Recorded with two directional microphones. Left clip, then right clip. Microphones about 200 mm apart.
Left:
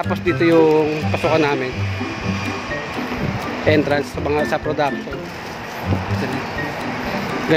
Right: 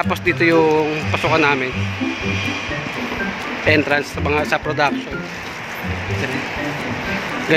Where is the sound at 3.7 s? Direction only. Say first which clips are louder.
Right 1 dB; 10° left (ahead or behind).